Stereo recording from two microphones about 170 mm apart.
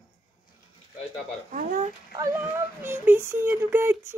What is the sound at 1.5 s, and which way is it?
Speech, 50° right (ahead or behind).